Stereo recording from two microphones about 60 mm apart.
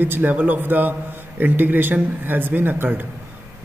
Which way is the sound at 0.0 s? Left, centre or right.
Right.